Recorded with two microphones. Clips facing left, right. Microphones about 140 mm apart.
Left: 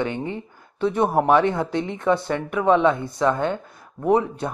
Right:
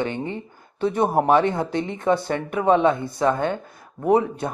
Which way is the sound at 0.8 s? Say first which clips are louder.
Even; 40° right (ahead or behind).